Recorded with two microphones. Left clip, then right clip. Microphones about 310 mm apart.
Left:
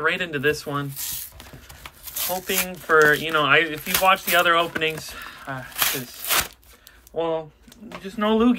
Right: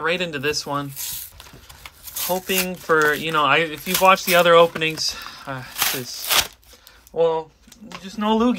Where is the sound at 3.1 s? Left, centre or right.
Centre.